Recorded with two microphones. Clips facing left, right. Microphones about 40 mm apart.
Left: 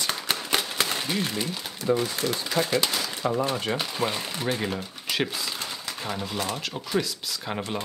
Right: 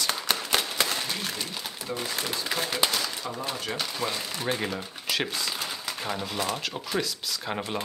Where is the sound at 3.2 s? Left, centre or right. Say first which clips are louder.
Left 7 dB; left.